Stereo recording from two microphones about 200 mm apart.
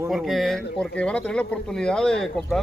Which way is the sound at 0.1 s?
Centre (ahead or behind).